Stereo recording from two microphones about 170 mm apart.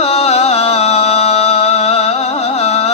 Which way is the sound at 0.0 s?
40° left (ahead or behind).